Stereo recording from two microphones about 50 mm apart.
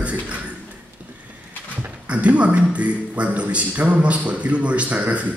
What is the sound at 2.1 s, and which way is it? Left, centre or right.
A man's voice, right.